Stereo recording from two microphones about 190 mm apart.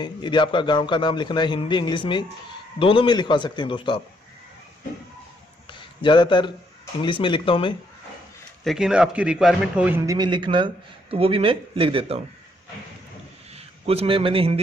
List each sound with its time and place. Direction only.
0.0 s a man's voice: 25° left (ahead or behind)
5.7 s a sound: 25° left (ahead or behind)
7.0 s a man's voice: 25° left (ahead or behind)
8.6 s a man's voice: 5° right (ahead or behind); by 12.2 s 30° right (ahead or behind)
13.6 s a man's voice: 30° right (ahead or behind)